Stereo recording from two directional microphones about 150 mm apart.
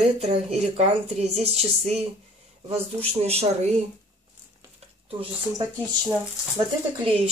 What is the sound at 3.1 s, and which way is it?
Speech, 45° right (ahead or behind).